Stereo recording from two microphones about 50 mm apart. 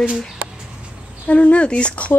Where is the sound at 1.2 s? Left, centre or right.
Left.